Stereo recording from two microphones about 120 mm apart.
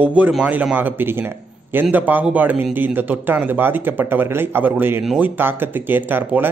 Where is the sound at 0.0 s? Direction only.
15° right (ahead or behind).